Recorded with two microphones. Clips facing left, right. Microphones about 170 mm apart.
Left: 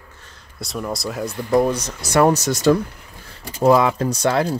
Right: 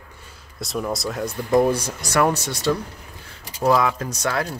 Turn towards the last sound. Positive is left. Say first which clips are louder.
# left 6 dB
turn(degrees=30)  # may be behind; listen again after turning